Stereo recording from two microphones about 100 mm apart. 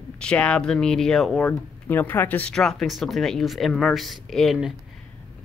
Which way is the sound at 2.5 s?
5° left (ahead or behind).